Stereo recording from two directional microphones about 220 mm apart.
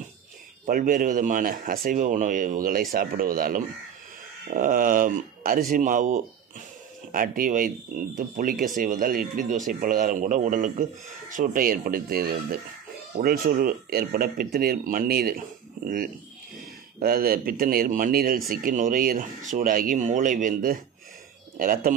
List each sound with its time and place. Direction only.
0.7 s speech: 40° right (ahead or behind)